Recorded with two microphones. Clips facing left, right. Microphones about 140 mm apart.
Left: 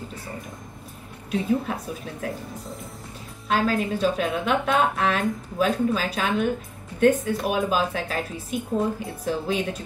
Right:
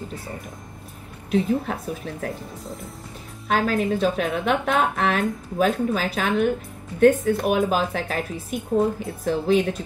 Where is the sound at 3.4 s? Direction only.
50° right (ahead or behind).